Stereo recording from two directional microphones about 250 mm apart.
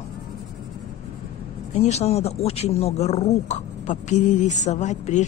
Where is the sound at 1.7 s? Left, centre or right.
Left.